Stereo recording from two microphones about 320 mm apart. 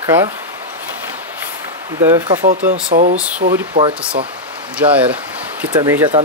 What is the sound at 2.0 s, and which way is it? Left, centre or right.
Speech, centre.